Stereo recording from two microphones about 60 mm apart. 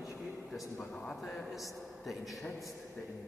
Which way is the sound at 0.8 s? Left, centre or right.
Centre.